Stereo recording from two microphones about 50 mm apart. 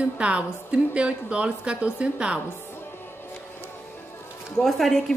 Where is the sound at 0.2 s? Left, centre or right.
Right.